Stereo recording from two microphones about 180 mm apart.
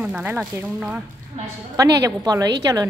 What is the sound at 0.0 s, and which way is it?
Speech, 5° right (ahead or behind).